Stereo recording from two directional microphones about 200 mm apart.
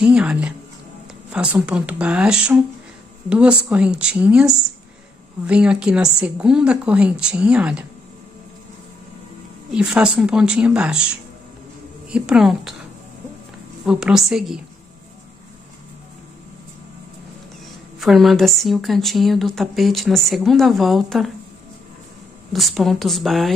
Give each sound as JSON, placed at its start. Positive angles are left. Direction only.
{"t": 0.0, "sound": "speech", "side_deg": -5}
{"t": 9.7, "sound": "speech", "side_deg": -5}
{"t": 13.8, "sound": "speech", "side_deg": -5}
{"t": 18.0, "sound": "speech", "side_deg": 0}
{"t": 22.5, "sound": "speech", "side_deg": 0}